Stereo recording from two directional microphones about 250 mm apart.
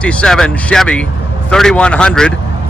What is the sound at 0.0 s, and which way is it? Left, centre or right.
Speech, centre.